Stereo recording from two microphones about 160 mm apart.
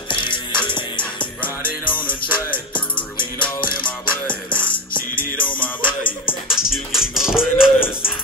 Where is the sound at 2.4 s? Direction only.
10° left (ahead or behind).